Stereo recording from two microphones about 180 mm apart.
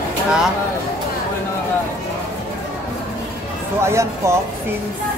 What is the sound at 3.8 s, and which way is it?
Speech, 15° right (ahead or behind).